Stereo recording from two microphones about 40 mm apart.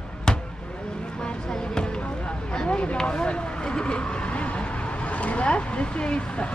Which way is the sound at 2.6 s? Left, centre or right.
Left.